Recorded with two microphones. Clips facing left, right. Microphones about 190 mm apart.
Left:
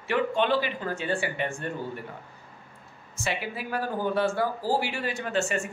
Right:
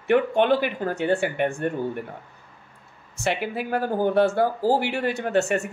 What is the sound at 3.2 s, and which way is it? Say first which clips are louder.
Speech: right 6 dB; 60° right (ahead or behind).